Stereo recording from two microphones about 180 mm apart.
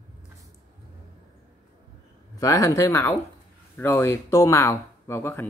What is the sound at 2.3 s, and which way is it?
Speech, 15° left (ahead or behind).